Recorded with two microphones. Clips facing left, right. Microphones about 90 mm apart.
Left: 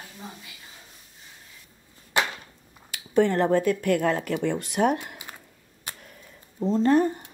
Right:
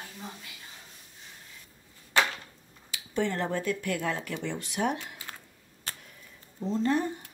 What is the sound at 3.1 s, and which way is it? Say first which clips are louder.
Speech: left 9 dB; 50° left (ahead or behind).